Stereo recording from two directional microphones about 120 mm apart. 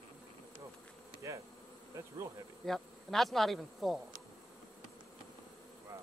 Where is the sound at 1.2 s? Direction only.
25° right (ahead or behind).